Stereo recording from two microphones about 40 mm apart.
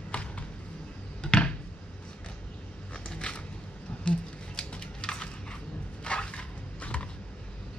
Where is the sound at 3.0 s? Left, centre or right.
Left.